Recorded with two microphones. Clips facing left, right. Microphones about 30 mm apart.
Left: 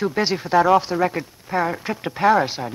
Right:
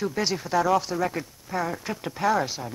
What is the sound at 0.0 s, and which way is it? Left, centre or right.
Speech, left.